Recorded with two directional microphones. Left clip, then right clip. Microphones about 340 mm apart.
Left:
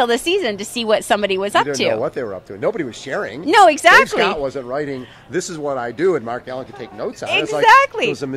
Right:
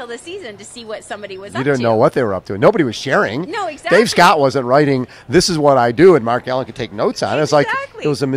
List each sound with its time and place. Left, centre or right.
0.0 s speech: left
2.0 s speech: right
3.4 s speech: left
4.0 s speech: right
7.6 s speech: left